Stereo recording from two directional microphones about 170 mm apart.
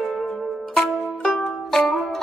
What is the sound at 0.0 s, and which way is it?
Music, centre (ahead or behind).